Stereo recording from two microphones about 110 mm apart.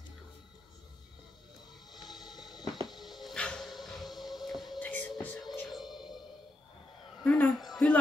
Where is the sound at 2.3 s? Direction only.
40° left (ahead or behind).